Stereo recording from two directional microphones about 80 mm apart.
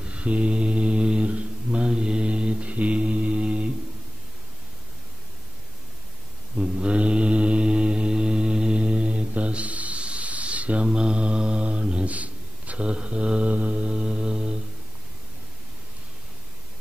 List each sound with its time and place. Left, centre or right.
0.0 s mantra: centre
6.5 s mantra: centre